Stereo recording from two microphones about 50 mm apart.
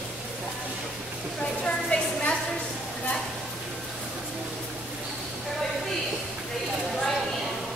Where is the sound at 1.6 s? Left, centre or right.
Left.